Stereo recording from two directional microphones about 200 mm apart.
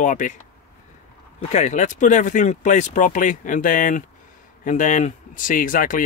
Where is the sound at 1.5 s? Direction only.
35° left (ahead or behind).